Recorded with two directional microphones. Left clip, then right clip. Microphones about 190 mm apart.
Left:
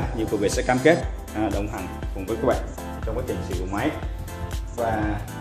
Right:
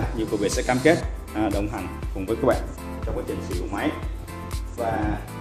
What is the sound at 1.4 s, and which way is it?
Speech, 25° right (ahead or behind).